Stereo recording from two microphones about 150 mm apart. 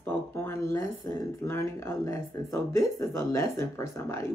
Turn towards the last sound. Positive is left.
turn(degrees=15)  # may be behind; listen again after turning